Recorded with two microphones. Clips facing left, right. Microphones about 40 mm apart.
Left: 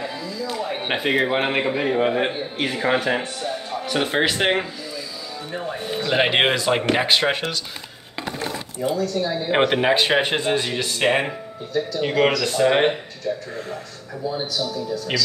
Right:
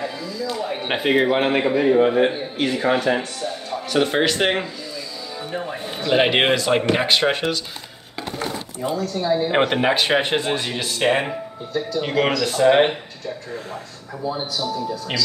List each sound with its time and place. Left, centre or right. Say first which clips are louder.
0.0 s a man's voice: right 1 dB; centre
9.1 s speech: right 3 dB; centre
9.5 s speech: left 4 dB; centre
14.6 s speech: right 1 dB; right